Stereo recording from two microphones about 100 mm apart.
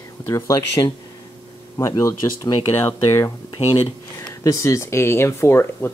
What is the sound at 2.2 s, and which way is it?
Speech, 30° left (ahead or behind).